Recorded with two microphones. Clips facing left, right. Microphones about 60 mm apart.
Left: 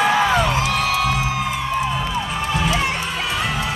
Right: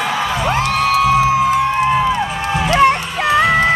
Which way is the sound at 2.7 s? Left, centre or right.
Right.